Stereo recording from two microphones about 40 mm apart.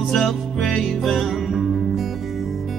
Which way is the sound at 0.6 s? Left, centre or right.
Centre.